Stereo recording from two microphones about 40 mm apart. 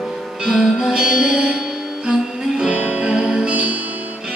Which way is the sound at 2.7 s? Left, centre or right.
Right.